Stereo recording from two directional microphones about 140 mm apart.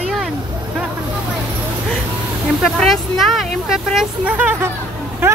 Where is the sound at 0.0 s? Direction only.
Centre (ahead or behind).